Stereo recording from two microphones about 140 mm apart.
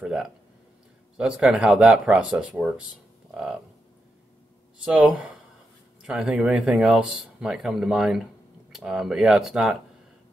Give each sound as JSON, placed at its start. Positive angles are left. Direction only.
{"t": 0.0, "sound": "speech", "side_deg": -5}
{"t": 4.8, "sound": "speech", "side_deg": -10}